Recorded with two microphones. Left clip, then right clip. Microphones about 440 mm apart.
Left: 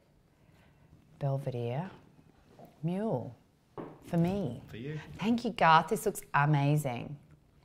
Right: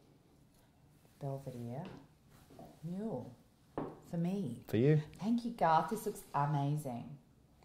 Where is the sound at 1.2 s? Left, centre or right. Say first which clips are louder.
Left 8 dB; left.